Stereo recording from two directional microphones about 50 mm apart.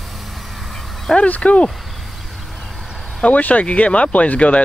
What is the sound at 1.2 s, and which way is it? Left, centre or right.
Speech, left.